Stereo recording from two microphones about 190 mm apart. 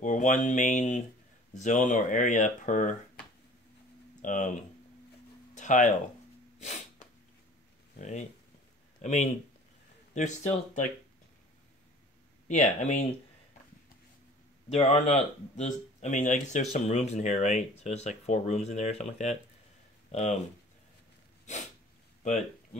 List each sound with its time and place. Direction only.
0.0 s a sound: 40° left (ahead or behind)
1.5 s speech: 40° left (ahead or behind)
4.2 s speech: 40° left (ahead or behind)
5.5 s a sound: 40° left (ahead or behind)
7.9 s speech: 40° left (ahead or behind)
12.4 s speech: 40° left (ahead or behind)
14.7 s speech: 35° left (ahead or behind)
21.5 s sneeze: 40° left (ahead or behind)